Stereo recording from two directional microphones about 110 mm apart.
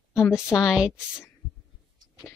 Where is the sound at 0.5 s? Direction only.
5° right (ahead or behind).